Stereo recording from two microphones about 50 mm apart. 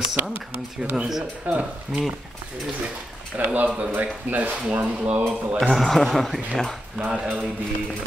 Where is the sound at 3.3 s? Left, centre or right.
Right.